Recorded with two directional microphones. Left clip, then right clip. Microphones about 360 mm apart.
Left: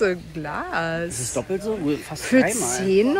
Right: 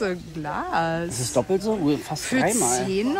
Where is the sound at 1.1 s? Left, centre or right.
Right.